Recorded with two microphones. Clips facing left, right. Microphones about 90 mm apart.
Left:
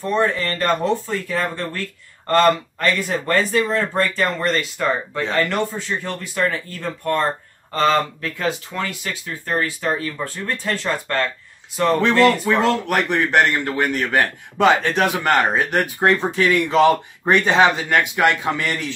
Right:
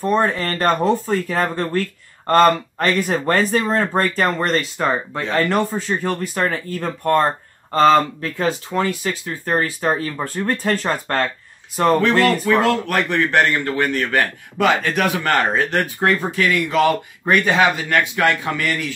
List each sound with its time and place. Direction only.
0.1 s speech: 45° right (ahead or behind)
4.4 s speech: 40° right (ahead or behind)
12.2 s speech: 25° left (ahead or behind)